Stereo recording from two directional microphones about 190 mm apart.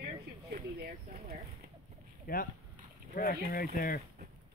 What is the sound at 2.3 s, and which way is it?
Speech, 50° left (ahead or behind).